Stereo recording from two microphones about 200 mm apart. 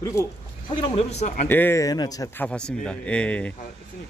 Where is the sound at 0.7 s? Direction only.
30° left (ahead or behind).